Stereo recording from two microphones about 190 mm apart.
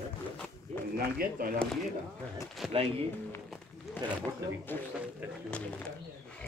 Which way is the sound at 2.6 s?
Centre (ahead or behind).